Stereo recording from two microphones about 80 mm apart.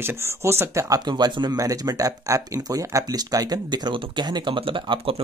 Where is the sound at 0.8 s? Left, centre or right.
Right.